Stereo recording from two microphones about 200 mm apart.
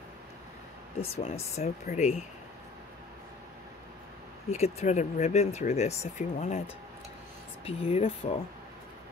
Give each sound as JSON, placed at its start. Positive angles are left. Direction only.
{"t": 1.2, "sound": "speech", "side_deg": 30}
{"t": 4.5, "sound": "speech", "side_deg": 35}
{"t": 7.6, "sound": "speech", "side_deg": 30}